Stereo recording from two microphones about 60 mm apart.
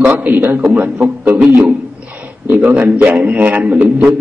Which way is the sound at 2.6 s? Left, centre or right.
Right.